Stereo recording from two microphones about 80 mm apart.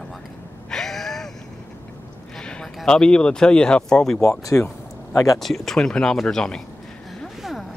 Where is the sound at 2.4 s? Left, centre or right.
Centre.